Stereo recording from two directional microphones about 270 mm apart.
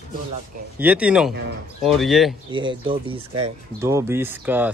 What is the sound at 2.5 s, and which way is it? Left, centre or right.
Speech, centre.